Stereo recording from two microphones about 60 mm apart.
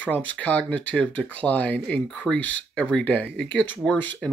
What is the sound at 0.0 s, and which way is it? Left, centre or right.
Speech, left.